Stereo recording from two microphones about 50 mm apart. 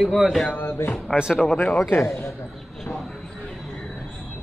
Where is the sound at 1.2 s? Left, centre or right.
Centre.